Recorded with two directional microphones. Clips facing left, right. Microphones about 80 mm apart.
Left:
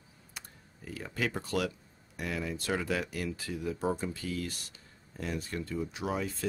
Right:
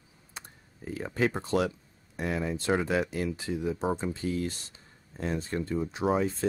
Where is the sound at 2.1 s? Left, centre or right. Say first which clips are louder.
Right 5 dB; right.